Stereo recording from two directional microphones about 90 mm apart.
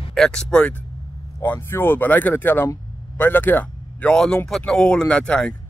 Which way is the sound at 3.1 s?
20° left (ahead or behind).